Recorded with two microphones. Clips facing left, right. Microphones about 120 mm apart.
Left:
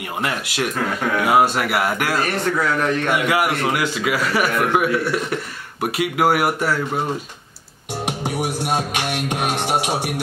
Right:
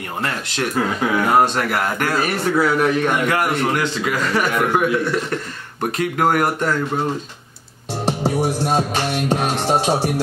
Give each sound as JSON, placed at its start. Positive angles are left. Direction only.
{"t": 0.2, "sound": "speech", "side_deg": 10}
{"t": 0.7, "sound": "speech", "side_deg": -5}
{"t": 1.2, "sound": "speech", "side_deg": 5}
{"t": 2.1, "sound": "a man's voice", "side_deg": -5}
{"t": 3.1, "sound": "speech", "side_deg": 10}
{"t": 8.2, "sound": "music", "side_deg": -30}
{"t": 9.3, "sound": "speech", "side_deg": 15}